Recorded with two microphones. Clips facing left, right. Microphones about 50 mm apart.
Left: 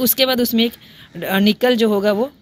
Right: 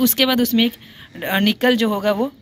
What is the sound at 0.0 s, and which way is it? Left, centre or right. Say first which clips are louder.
Speech: even; right.